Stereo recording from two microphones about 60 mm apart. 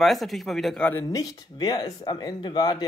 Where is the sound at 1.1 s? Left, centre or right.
Left.